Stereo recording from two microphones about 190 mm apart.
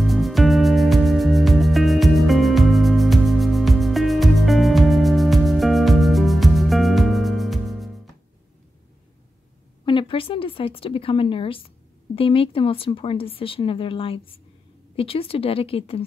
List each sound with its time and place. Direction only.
0.0 s music: centre (ahead or behind)
9.8 s speech: 25° left (ahead or behind)